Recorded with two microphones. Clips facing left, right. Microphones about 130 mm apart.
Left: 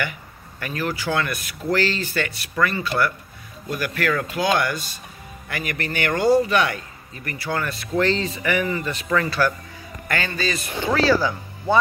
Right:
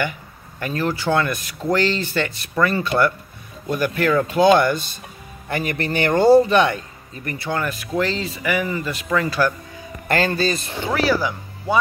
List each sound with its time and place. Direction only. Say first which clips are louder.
0.6 s speech: right 4 dB; 25° right (ahead or behind)
10.0 s a man's voice: right 6 dB; 35° right (ahead or behind)
10.9 s speech: left 1 dB; 15° right (ahead or behind)